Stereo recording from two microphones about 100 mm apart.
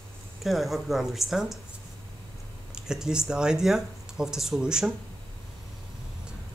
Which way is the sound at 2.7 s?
5° right (ahead or behind).